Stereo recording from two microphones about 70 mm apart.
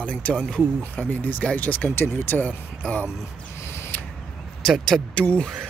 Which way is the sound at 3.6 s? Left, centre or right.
Left.